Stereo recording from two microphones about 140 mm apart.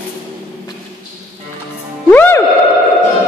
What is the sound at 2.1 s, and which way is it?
Music, 15° left (ahead or behind).